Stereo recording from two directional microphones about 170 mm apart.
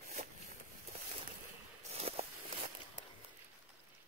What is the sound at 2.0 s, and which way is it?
Walk, 40° right (ahead or behind).